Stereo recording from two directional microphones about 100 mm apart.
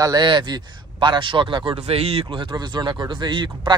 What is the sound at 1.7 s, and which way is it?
Speech, 80° right.